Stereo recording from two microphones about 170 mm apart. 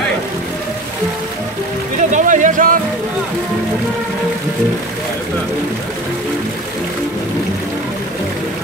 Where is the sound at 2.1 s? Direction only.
50° right (ahead or behind).